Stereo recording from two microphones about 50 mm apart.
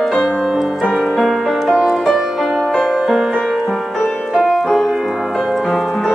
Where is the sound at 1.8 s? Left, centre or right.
Centre.